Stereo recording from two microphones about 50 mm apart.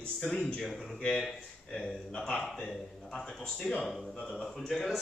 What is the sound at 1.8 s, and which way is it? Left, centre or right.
Speech, centre.